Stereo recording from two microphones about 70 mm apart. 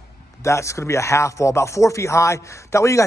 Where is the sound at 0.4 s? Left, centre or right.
Left.